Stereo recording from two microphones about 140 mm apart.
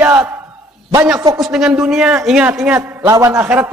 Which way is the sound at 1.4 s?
5° right (ahead or behind).